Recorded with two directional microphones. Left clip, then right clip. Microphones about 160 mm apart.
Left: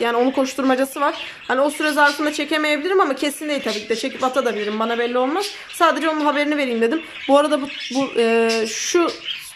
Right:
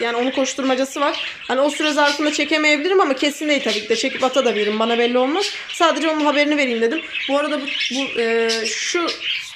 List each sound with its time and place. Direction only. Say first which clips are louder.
0.0 s speech: left 1 dB; 10° left (ahead or behind)
7.2 s speech: left 5 dB; 15° left (ahead or behind)